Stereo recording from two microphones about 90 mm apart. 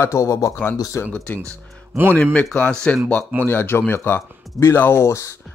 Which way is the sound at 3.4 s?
25° left (ahead or behind).